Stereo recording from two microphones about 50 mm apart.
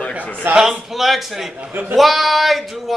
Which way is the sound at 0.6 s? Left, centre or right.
Centre.